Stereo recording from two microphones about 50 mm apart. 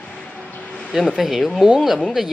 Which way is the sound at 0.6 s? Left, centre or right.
Left.